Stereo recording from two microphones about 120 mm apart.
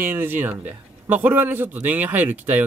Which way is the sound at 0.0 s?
15° right (ahead or behind).